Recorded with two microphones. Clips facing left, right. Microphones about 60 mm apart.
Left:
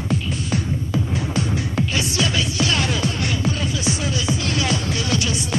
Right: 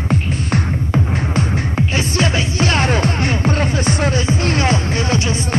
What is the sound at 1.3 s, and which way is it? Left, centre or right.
Music, right.